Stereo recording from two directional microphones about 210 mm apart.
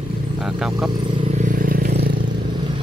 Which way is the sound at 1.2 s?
35° right (ahead or behind).